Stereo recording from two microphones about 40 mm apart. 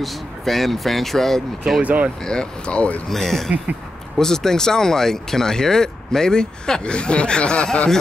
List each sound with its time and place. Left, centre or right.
0.0 s speech: centre
1.8 s speech: right
2.2 s speech: left
3.1 s speech: centre; by 7.9 s left